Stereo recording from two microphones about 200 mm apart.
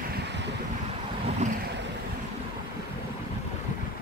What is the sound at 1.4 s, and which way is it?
Vehicle, 35° right (ahead or behind).